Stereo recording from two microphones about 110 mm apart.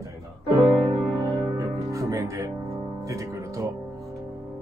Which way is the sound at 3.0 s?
30° right (ahead or behind).